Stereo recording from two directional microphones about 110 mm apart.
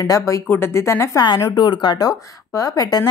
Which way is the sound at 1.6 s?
40° left (ahead or behind).